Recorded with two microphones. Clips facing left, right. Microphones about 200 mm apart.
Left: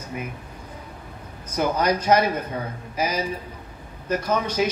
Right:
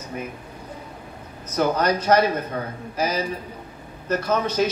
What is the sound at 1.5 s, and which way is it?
Speech, 10° left (ahead or behind).